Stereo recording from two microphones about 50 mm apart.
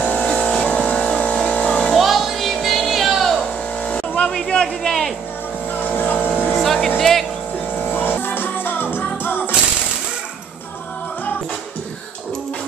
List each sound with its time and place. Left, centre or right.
0.2 s music: centre
2.0 s music: centre
3.8 s buzz: left
4.3 s a sound: centre
5.9 s vehicle: left
6.6 s music: centre
7.9 s music: left